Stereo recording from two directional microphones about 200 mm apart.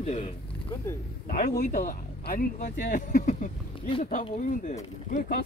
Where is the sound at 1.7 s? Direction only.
45° left (ahead or behind).